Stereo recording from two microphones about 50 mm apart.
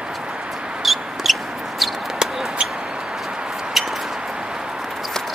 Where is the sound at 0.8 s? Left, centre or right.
Centre.